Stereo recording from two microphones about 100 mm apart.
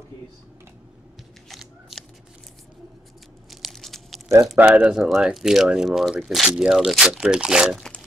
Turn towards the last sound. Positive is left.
turn(degrees=-5)  # may be behind; listen again after turning